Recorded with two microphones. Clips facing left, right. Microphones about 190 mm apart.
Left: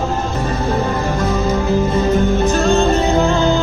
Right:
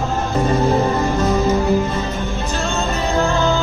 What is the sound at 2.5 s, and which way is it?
Music, 40° left (ahead or behind).